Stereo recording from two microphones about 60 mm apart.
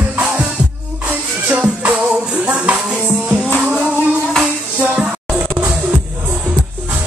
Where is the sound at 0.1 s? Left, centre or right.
Right.